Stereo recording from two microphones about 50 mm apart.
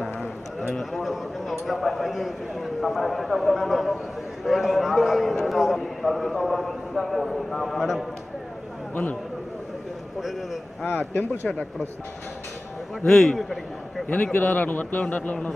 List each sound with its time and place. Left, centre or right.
0.0 s a man's voice: centre
5.3 s a man's voice: centre
10.2 s a man's voice: centre
10.9 s a man's voice: left
11.5 s a man's voice: centre
13.0 s a man's voice: centre
14.0 s a man's voice: left